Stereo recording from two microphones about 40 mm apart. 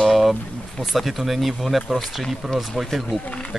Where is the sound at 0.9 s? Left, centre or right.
Centre.